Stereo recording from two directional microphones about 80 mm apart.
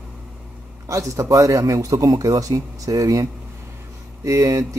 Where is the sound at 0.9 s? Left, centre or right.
Right.